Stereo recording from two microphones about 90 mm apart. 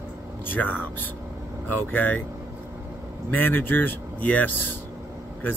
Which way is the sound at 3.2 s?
20° left (ahead or behind).